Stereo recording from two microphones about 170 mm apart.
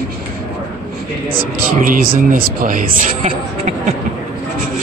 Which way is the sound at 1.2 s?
60° right (ahead or behind).